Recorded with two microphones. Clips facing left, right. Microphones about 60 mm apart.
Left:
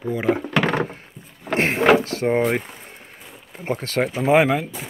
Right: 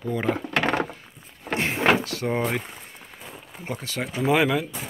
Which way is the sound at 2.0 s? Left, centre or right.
Left.